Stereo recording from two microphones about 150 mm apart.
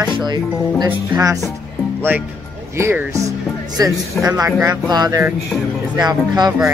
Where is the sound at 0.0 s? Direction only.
30° right (ahead or behind).